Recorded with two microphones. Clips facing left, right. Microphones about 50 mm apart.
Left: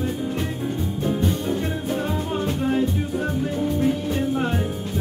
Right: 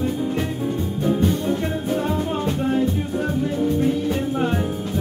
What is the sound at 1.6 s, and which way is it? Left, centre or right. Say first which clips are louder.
Music: right 2 dB; centre.